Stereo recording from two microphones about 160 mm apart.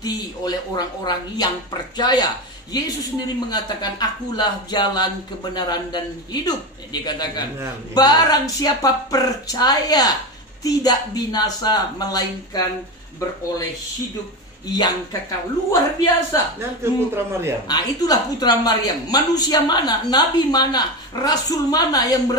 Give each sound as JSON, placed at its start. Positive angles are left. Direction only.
{"t": 0.0, "sound": "a woman's voice", "side_deg": 25}
{"t": 14.7, "sound": "a woman's voice", "side_deg": 25}
{"t": 16.8, "sound": "a man's voice", "side_deg": -15}
{"t": 17.6, "sound": "a woman's voice", "side_deg": 25}